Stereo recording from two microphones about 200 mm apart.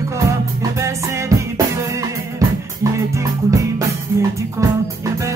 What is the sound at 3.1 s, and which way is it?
Music, 15° right (ahead or behind).